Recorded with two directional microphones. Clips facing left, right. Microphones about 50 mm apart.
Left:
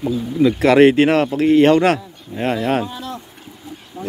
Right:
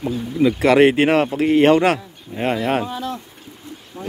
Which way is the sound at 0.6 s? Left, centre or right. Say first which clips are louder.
Left 2 dB; centre.